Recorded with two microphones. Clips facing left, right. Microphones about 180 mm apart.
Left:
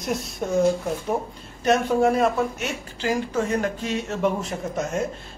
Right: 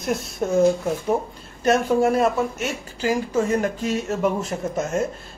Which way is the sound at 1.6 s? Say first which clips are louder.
Right 1 dB; centre (ahead or behind).